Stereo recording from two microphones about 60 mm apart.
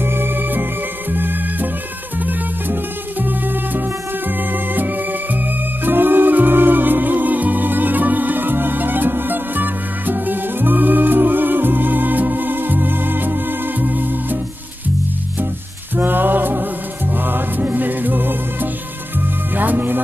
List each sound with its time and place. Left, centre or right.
0.0 s music: right
16.0 s music: right